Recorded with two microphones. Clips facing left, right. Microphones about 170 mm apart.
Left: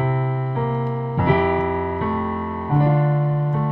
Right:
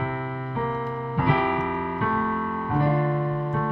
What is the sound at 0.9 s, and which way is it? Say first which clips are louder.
Music: left 5 dB; 30° left (ahead or behind).